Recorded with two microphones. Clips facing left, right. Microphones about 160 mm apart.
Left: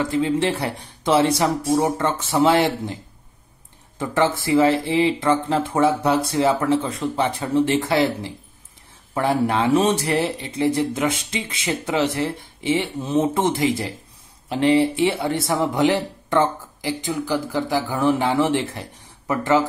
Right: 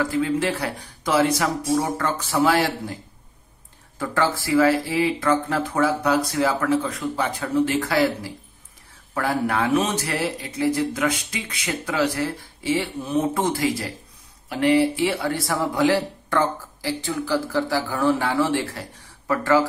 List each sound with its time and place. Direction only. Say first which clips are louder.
0.0 s speech: left 2 dB; 25° left (ahead or behind)
4.0 s speech: left 3 dB; 20° left (ahead or behind)